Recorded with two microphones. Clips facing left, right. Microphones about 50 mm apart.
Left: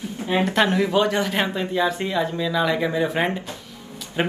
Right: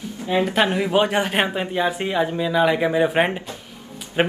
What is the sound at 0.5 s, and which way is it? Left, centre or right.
Speech, centre.